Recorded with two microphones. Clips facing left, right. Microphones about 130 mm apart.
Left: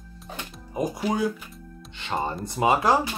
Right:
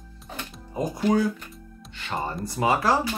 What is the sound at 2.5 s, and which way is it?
Speech, 20° left (ahead or behind).